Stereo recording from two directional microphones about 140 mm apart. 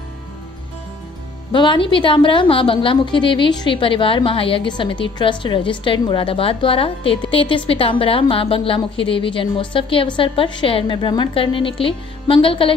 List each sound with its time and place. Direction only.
1.5 s a woman's voice: 35° left (ahead or behind)